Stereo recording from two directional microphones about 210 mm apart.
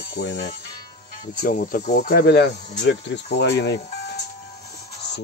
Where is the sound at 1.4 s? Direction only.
40° left (ahead or behind).